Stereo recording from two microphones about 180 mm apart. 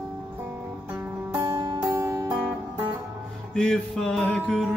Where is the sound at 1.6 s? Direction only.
25° right (ahead or behind).